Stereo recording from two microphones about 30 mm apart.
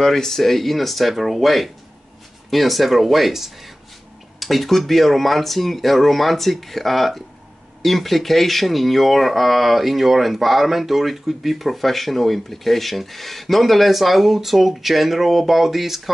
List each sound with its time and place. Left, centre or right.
0.0 s speech: centre